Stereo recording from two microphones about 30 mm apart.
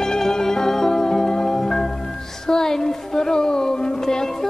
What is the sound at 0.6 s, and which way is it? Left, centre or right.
Music, centre.